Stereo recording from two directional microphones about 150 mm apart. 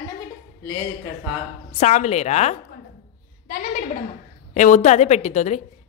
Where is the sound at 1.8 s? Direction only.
50° left (ahead or behind).